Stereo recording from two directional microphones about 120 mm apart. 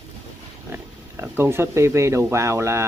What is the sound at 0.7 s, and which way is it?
Speech, 20° right (ahead or behind).